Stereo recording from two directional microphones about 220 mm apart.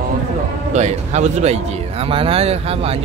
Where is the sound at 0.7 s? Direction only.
30° right (ahead or behind).